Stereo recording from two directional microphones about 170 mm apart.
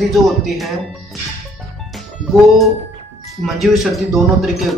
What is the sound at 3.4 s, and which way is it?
Speech, centre (ahead or behind).